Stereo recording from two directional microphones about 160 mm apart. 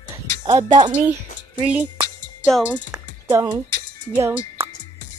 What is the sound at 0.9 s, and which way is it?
Music, 10° right (ahead or behind).